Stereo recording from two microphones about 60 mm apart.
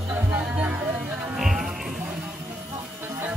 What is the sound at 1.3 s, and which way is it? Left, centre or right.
Music, centre.